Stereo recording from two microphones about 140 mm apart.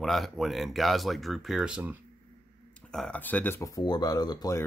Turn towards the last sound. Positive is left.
turn(degrees=25)  # may be behind; listen again after turning